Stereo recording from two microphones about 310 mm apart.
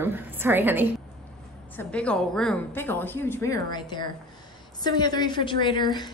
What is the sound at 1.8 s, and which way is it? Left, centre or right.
A woman's voice, centre.